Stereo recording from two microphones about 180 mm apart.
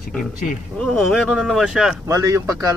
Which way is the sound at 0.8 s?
5° left (ahead or behind).